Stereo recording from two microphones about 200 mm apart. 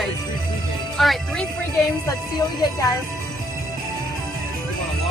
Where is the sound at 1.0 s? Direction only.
Centre (ahead or behind).